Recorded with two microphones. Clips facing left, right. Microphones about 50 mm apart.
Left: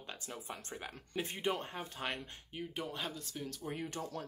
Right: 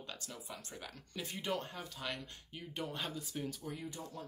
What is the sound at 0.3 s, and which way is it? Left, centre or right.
Speech, left.